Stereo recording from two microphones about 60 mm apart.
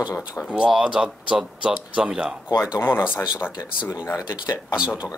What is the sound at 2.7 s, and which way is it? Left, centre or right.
Speech, left.